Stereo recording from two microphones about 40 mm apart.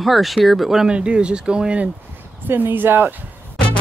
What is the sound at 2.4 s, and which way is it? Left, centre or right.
Speech, right.